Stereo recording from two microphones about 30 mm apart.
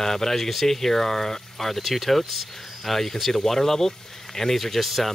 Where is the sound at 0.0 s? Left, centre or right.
Centre.